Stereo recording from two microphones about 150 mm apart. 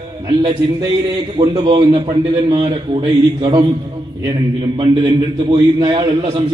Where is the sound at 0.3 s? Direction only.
35° right (ahead or behind).